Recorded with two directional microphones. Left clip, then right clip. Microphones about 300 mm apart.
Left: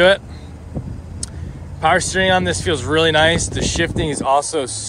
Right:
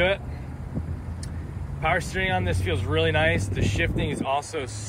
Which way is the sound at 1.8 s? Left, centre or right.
Left.